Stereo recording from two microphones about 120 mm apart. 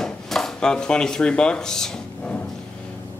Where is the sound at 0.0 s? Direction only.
5° left (ahead or behind).